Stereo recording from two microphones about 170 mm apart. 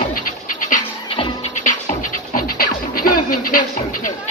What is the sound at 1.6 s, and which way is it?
Music, 50° left (ahead or behind).